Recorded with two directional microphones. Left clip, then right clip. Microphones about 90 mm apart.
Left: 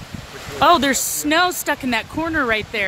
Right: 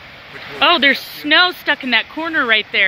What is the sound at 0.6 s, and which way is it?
Speech, 30° left (ahead or behind).